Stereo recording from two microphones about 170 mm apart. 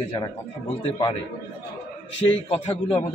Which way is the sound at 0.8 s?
30° left (ahead or behind).